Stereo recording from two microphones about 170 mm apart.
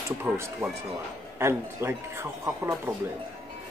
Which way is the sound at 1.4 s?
15° right (ahead or behind).